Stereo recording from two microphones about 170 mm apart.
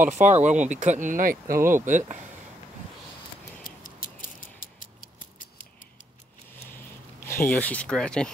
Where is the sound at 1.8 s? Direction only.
45° right (ahead or behind).